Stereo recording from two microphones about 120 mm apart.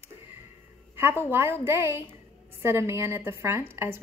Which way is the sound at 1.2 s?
20° right (ahead or behind).